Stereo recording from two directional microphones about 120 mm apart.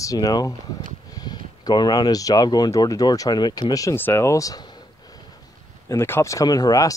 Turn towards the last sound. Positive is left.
turn(degrees=30)  # may be behind; listen again after turning